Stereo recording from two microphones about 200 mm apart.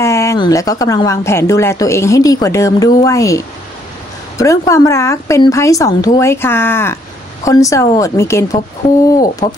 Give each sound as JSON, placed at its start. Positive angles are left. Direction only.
{"t": 0.0, "sound": "a woman's voice", "side_deg": 15}